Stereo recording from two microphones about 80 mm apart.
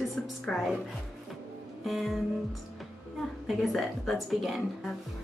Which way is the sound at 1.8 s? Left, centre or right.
Centre.